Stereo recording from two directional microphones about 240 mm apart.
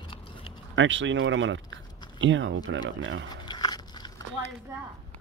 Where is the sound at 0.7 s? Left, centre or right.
Right.